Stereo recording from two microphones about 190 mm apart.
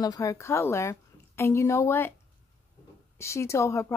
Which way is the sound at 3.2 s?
15° left (ahead or behind).